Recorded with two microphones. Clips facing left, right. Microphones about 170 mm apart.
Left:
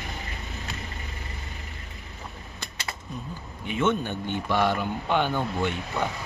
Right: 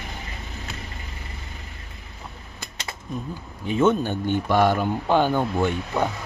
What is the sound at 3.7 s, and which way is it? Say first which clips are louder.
A man's voice: right 5 dB; 35° right (ahead or behind).